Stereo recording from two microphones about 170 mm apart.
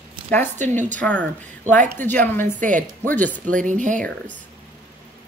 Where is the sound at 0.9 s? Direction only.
5° left (ahead or behind).